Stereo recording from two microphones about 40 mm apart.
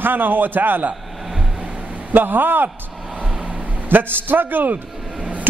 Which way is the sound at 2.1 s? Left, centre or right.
Right.